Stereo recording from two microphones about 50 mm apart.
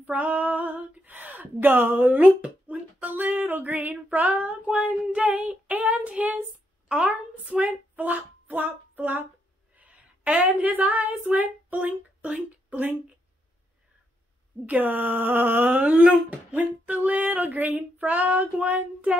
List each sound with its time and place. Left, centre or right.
0.0 s speech: right
5.2 s child singing: right
6.9 s speech: right
9.8 s a sound: right
10.5 s speech: right
14.7 s speech: right
15.9 s child singing: right
16.5 s speech: right